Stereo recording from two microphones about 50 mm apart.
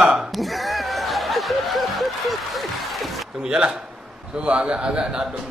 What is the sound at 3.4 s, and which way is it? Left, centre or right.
A man's voice, centre.